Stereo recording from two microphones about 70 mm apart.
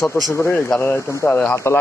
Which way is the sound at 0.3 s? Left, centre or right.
Left.